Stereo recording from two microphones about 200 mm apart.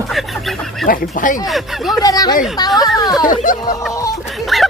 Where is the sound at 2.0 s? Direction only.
20° left (ahead or behind).